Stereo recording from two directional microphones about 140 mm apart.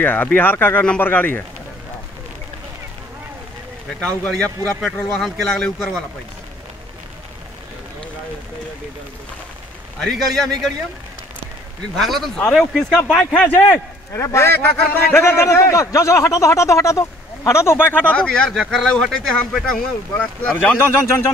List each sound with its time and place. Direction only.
0.0 s speech: 15° left (ahead or behind)
4.0 s speech: 10° left (ahead or behind)
5.2 s speech: centre (ahead or behind)
9.9 s speech: centre (ahead or behind)
12.0 s speech: centre (ahead or behind)